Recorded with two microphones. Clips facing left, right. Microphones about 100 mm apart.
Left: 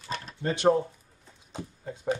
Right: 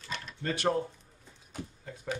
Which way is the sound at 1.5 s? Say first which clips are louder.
Left 4 dB; 25° left (ahead or behind).